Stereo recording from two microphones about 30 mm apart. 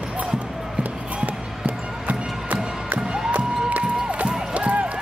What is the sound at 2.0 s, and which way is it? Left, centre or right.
Music, right.